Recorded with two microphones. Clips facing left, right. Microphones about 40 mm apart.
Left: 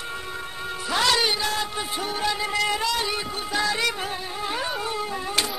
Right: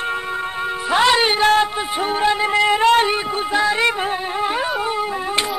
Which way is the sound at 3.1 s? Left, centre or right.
Right.